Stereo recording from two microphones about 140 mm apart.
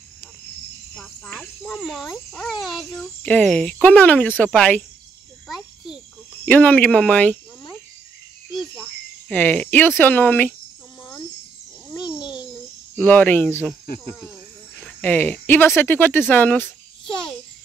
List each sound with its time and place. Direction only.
0.9 s speech: 5° left (ahead or behind)
6.4 s speech: 10° left (ahead or behind)
9.3 s speech: 10° left (ahead or behind)
11.9 s babbling: 30° left (ahead or behind)
12.9 s speech: 10° left (ahead or behind)
14.8 s speech: 10° left (ahead or behind)
17.0 s babbling: 35° left (ahead or behind)